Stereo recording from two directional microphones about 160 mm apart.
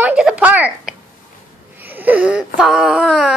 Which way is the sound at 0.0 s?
5° right (ahead or behind).